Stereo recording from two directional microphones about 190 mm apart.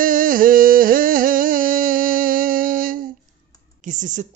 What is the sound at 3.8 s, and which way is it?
Speech, 40° right (ahead or behind).